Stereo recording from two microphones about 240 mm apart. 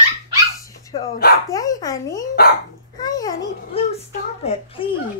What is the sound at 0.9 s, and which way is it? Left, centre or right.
Dog, left.